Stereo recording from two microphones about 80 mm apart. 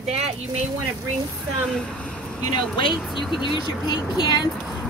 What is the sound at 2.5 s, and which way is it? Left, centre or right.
Speech, left.